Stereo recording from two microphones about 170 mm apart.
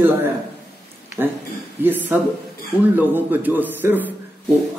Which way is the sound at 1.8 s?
10° right (ahead or behind).